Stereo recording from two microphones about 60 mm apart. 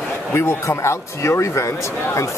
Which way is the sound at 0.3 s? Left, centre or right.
Left.